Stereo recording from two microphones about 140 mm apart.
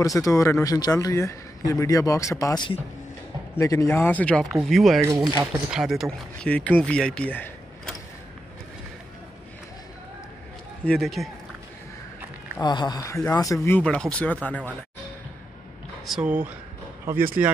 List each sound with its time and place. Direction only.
0.0 s speech: 25° left (ahead or behind); by 6.0 s 5° right (ahead or behind)
6.4 s speech: 10° left (ahead or behind)
10.9 s speech: centre (ahead or behind)
12.6 s speech: 30° left (ahead or behind)
13.7 s speech: 5° left (ahead or behind)
16.1 s speech: 10° right (ahead or behind)